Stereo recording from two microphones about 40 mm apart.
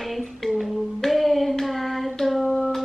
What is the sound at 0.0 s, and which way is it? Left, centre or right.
Hands, centre.